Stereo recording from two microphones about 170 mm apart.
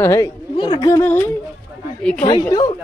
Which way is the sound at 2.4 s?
20° left (ahead or behind).